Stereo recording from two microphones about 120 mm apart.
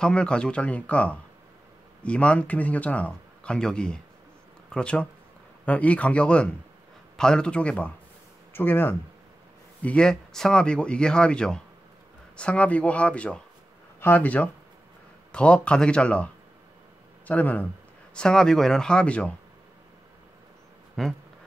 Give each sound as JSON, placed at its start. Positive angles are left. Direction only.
{"t": 0.0, "sound": "speech", "side_deg": 10}
{"t": 17.3, "sound": "speech", "side_deg": 15}
{"t": 21.0, "sound": "a sound", "side_deg": 5}